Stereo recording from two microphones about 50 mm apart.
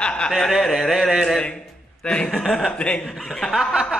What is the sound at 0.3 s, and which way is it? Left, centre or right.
Speech, centre.